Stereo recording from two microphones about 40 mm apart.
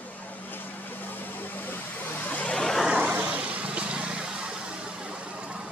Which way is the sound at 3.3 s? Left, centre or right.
Right.